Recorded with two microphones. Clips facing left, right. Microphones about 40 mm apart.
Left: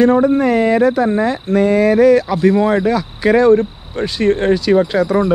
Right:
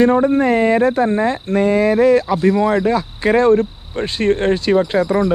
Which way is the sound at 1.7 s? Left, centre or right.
Left.